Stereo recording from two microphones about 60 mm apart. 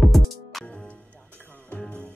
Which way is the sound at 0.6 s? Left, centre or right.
Centre.